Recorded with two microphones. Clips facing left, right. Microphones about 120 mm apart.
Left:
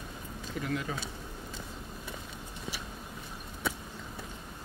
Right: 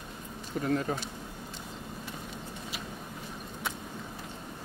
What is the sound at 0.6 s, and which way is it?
Speech, 40° right (ahead or behind).